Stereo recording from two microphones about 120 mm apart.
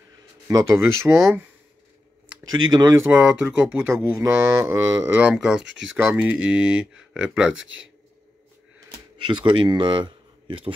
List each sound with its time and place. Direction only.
0.5 s speech: 30° right (ahead or behind)
1.0 s speech: 20° right (ahead or behind)
2.7 s speech: 30° right (ahead or behind)
3.0 s speech: 10° right (ahead or behind)
3.8 s speech: 25° right (ahead or behind)
5.1 s speech: 10° right (ahead or behind)
5.9 s speech: 15° right (ahead or behind)
9.2 s speech: 40° right (ahead or behind)